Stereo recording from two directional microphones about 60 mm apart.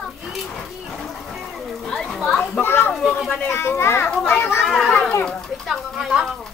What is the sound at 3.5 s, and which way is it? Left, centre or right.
Speech, left.